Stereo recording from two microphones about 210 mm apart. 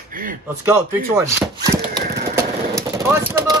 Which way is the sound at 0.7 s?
10° right (ahead or behind).